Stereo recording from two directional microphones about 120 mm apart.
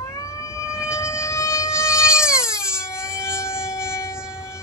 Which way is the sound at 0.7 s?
25° left (ahead or behind).